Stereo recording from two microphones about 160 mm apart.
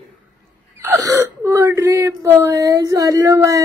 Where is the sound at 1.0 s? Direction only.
20° right (ahead or behind).